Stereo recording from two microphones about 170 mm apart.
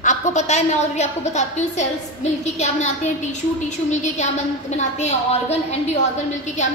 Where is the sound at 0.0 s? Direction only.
45° left (ahead or behind).